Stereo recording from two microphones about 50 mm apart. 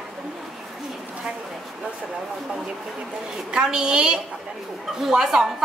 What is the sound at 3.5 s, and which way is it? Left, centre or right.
A woman's voice, centre.